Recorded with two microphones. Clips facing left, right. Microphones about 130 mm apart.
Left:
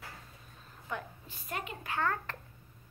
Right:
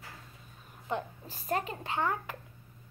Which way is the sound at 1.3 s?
35° right (ahead or behind).